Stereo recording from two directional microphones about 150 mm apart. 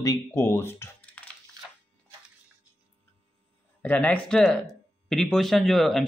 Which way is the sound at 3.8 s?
10° left (ahead or behind).